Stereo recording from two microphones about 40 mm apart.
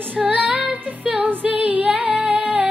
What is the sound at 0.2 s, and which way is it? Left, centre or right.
Female singing, right.